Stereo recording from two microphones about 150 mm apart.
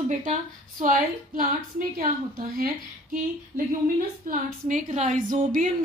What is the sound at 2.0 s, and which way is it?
Speech, 75° right (ahead or behind).